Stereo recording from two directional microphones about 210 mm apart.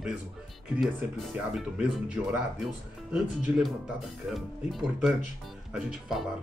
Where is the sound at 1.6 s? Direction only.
5° right (ahead or behind).